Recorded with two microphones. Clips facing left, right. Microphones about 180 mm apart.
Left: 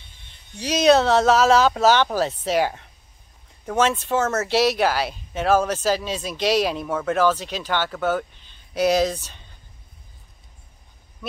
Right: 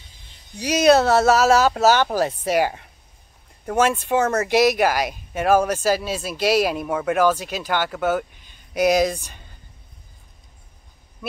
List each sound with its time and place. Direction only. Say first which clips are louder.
0.6 s speech: right 1 dB; 10° right (ahead or behind)